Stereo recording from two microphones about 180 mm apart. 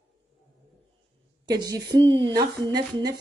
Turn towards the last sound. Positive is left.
turn(degrees=-20)  # may be behind; listen again after turning